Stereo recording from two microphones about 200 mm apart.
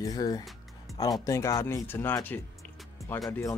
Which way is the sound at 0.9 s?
Centre (ahead or behind).